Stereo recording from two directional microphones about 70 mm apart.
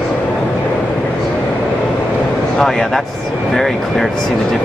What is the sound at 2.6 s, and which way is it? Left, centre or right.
Speech, centre.